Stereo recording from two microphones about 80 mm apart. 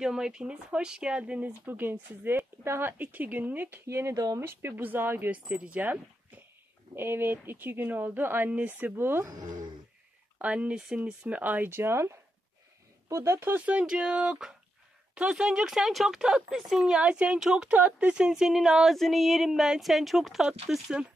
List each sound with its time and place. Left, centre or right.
0.0 s speech: centre
1.7 s speech: right
10.4 s speech: centre; by 13.4 s right
13.4 s speech: centre
17.6 s speech: centre